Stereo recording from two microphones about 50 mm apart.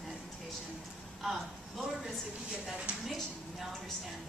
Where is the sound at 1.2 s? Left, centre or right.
Centre.